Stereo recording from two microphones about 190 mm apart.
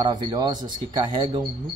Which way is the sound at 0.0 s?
20° right (ahead or behind).